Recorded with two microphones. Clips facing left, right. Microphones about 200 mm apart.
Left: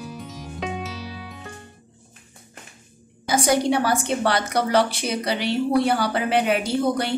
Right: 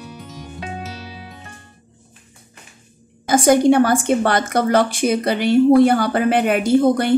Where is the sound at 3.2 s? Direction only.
50° right (ahead or behind).